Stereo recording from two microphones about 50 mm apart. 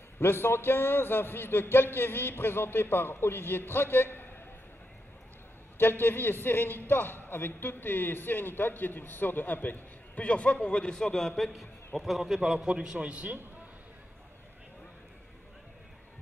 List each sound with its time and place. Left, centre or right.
0.2 s a man's voice: left
5.8 s a man's voice: left; by 13.4 s right